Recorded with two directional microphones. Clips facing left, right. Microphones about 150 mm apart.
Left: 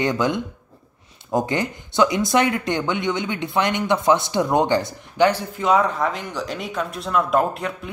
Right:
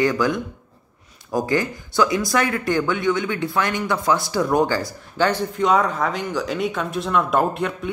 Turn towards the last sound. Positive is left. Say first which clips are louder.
# right 1 dB
turn(degrees=0)  # may be behind; listen again after turning